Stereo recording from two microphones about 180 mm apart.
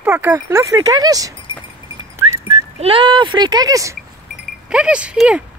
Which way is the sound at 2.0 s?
15° right (ahead or behind).